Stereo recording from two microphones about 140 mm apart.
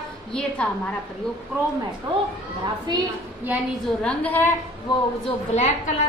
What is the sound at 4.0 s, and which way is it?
Speech, 10° left (ahead or behind).